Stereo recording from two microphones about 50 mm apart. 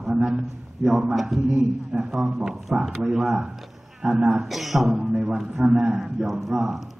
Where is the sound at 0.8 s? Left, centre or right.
Centre.